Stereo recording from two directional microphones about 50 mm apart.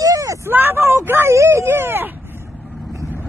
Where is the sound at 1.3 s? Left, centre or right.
Right.